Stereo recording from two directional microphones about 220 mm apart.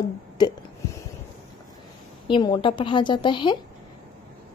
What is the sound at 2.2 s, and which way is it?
A woman's voice, 20° left (ahead or behind).